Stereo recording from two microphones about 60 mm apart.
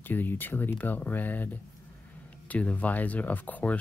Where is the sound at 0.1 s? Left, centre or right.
Left.